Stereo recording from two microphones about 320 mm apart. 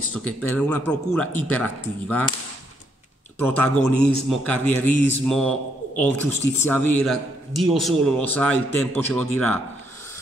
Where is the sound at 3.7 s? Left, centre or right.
Left.